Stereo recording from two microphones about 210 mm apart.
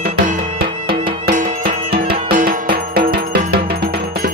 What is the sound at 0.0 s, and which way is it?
Music, 40° right (ahead or behind).